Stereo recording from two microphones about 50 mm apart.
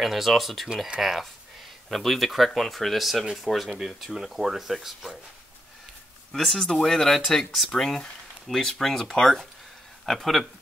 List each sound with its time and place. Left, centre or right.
0.0 s speech: centre
3.7 s speech: centre
6.3 s speech: centre